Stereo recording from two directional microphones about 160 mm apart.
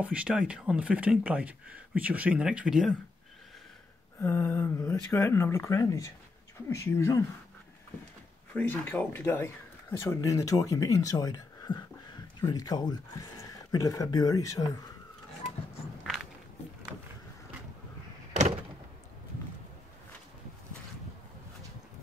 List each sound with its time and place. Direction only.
0.0 s speech: 5° right (ahead or behind)
4.2 s speech: 15° left (ahead or behind)
8.5 s speech: 10° left (ahead or behind)